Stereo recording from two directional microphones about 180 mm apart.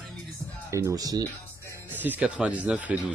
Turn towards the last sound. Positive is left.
turn(degrees=-5)  # may be behind; listen again after turning